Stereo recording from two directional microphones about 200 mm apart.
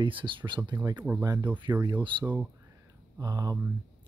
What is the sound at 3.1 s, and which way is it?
Speech, 20° right (ahead or behind).